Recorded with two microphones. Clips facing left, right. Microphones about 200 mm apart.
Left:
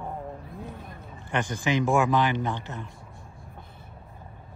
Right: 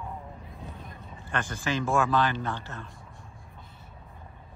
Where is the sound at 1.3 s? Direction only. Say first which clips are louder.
Left 4 dB; 15° left (ahead or behind).